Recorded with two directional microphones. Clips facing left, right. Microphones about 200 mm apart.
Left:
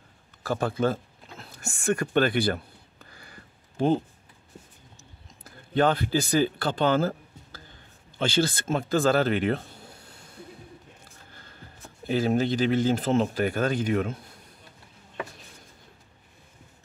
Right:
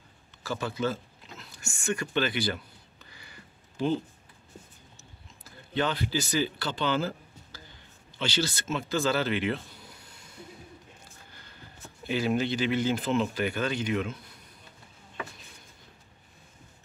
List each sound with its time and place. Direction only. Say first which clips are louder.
0.4 s a sound: left 5 dB; 50° left (ahead or behind)
8.2 s speech: left 5 dB; 50° left (ahead or behind)
12.1 s speech: left 3 dB; 40° left (ahead or behind)